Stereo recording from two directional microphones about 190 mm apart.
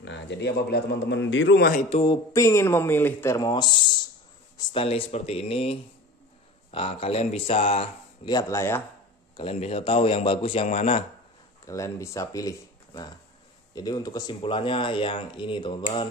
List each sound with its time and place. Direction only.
0.0 s a man's voice: 65° left (ahead or behind); by 1.9 s 50° left (ahead or behind)
1.9 s speech: 35° left (ahead or behind)
2.3 s speech: 15° left (ahead or behind)
9.4 s speech: 30° left (ahead or behind)
11.6 s speech: 15° left (ahead or behind)